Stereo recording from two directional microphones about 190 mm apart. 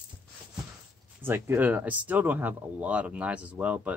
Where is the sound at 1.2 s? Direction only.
10° right (ahead or behind).